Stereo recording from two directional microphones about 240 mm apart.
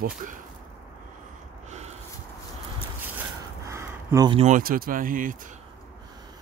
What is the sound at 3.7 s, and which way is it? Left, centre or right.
Speech, centre.